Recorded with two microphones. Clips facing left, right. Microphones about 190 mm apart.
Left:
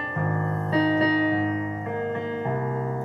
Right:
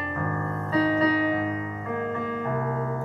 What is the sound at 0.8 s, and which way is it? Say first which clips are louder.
Music: left 1 dB; 30° left (ahead or behind).